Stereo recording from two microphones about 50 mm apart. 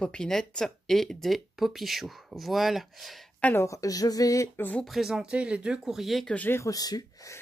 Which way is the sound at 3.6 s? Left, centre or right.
Left.